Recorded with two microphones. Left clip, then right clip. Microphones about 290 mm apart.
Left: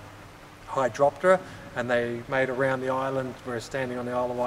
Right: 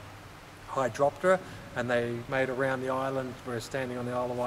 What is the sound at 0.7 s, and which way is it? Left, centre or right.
Speech, centre.